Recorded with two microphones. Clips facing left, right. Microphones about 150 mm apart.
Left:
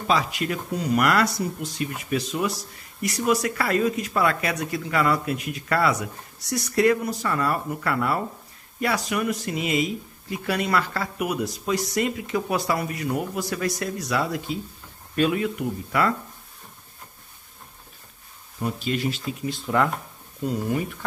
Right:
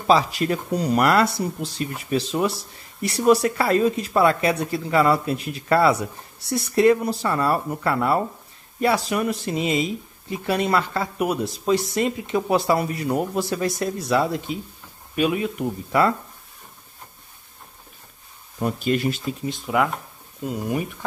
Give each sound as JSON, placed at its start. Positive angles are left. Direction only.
{"t": 0.0, "sound": "speech", "side_deg": -35}
{"t": 15.6, "sound": "speech", "side_deg": -30}
{"t": 18.6, "sound": "speech", "side_deg": -50}
{"t": 19.6, "sound": "speech", "side_deg": -10}